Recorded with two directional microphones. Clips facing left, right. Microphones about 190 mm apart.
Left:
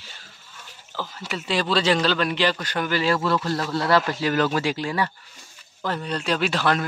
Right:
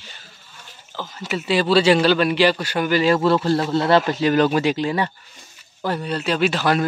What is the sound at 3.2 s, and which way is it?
Speech, 30° right (ahead or behind).